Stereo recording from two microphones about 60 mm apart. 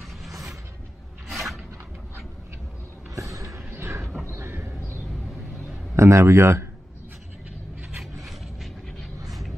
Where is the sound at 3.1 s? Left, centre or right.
Right.